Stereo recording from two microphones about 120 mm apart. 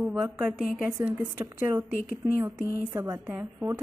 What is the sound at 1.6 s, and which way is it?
A woman's voice, 20° right (ahead or behind).